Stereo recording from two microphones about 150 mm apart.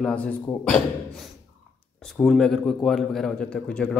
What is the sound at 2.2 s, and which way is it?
A man's voice, centre (ahead or behind).